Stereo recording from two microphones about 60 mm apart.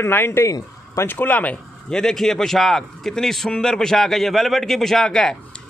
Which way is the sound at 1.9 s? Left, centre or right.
Centre.